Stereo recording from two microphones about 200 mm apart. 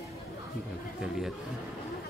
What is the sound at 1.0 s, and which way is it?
Speech, centre (ahead or behind).